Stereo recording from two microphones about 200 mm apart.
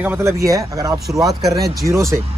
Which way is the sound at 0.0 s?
10° right (ahead or behind).